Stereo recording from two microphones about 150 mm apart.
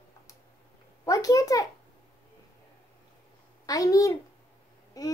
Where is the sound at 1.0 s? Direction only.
20° left (ahead or behind).